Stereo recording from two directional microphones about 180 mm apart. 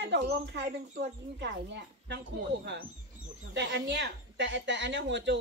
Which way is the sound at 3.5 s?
80° right.